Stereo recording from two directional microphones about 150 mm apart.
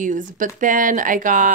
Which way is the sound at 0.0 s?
60° right (ahead or behind).